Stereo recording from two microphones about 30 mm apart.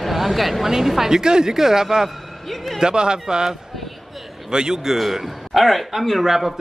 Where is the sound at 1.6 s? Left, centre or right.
Centre.